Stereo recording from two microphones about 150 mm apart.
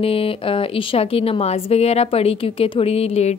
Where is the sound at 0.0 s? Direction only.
40° left (ahead or behind).